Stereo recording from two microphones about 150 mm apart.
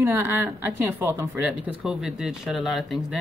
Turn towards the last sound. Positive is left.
turn(degrees=0)  # may be behind; listen again after turning